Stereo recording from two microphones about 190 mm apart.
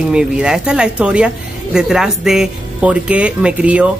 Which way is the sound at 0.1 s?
5° right (ahead or behind).